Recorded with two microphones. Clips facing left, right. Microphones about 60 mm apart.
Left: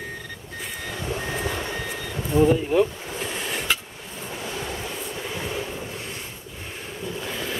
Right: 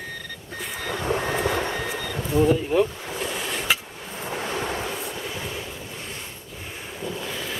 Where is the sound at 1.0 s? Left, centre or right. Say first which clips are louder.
Right 5 dB; right.